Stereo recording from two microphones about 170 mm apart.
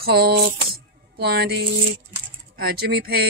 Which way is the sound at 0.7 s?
70° right (ahead or behind).